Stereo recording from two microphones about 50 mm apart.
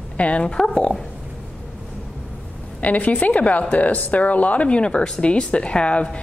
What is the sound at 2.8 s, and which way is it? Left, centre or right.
A woman's voice, left.